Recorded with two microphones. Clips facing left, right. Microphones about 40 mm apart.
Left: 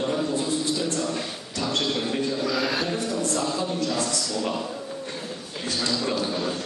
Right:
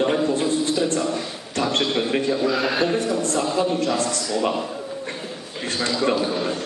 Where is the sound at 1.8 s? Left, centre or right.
Right.